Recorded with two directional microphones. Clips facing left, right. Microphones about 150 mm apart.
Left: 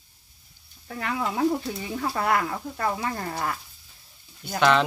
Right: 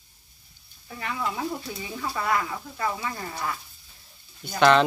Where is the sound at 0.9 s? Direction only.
65° left (ahead or behind).